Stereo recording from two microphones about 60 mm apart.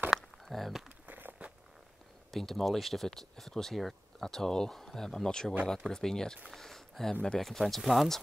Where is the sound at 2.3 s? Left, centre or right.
Centre.